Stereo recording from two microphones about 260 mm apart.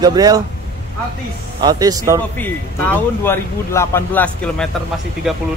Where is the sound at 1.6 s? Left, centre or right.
Centre.